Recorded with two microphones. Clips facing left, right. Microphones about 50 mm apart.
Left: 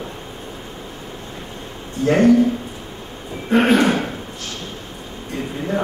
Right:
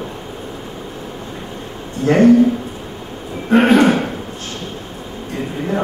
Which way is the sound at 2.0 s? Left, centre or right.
Right.